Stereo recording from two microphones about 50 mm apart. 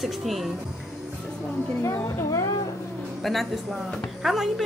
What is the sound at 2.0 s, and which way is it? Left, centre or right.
Speech, left.